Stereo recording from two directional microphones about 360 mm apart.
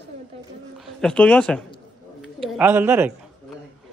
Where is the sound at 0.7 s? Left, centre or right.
Centre.